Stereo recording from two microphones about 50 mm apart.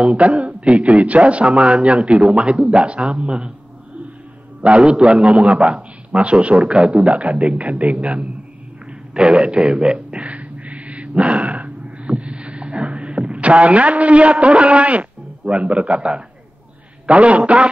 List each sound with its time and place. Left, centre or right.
0.0 s a man's voice: right
4.6 s a man's voice: right
9.1 s a sound: right
17.0 s a man's voice: right